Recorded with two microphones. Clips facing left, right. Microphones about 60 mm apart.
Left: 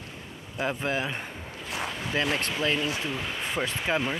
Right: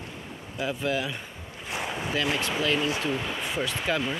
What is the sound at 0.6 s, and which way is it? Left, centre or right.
Speech, left.